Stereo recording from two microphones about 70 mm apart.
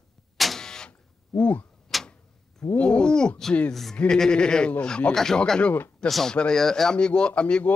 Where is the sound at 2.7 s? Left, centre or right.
Centre.